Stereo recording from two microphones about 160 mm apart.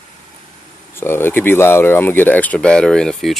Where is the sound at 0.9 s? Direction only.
15° left (ahead or behind).